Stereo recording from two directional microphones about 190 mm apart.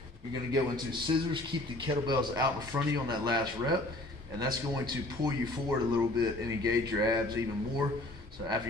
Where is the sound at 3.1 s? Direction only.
20° right (ahead or behind).